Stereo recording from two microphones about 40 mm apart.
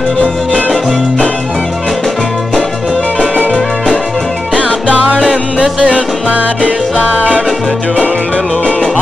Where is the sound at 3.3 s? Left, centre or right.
Right.